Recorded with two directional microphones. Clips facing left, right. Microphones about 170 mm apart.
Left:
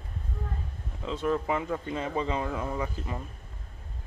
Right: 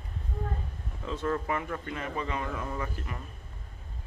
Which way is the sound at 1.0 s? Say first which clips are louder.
Left 3 dB; 15° left (ahead or behind).